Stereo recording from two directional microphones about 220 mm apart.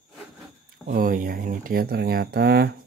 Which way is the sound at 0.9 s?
40° right (ahead or behind).